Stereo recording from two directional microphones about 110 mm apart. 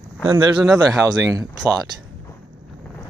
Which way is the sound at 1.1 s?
35° right (ahead or behind).